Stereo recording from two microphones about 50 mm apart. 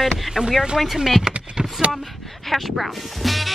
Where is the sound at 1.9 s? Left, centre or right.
Centre.